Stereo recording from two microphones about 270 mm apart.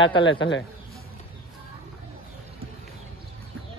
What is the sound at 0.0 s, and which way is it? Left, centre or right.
Speech, centre.